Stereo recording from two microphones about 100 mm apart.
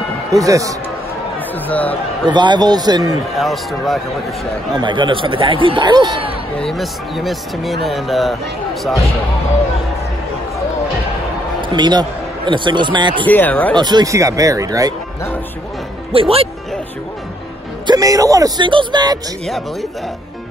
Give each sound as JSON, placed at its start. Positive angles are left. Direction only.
{"t": 0.3, "sound": "speech", "side_deg": -35}
{"t": 1.7, "sound": "speech", "side_deg": 15}
{"t": 2.3, "sound": "a man's voice", "side_deg": -50}
{"t": 3.3, "sound": "speech", "side_deg": 0}
{"t": 4.7, "sound": "speech", "side_deg": -50}
{"t": 6.6, "sound": "speech", "side_deg": 0}
{"t": 11.7, "sound": "speech", "side_deg": -45}
{"t": 13.3, "sound": "speech", "side_deg": 15}
{"t": 13.7, "sound": "a man's voice", "side_deg": -45}
{"t": 14.0, "sound": "speech", "side_deg": -35}
{"t": 16.1, "sound": "speech", "side_deg": -75}
{"t": 17.8, "sound": "speech", "side_deg": -35}
{"t": 18.6, "sound": "a man's voice", "side_deg": -55}
{"t": 19.4, "sound": "speech", "side_deg": 0}